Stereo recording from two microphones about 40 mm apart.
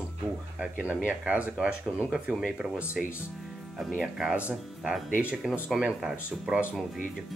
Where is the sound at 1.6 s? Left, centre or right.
Right.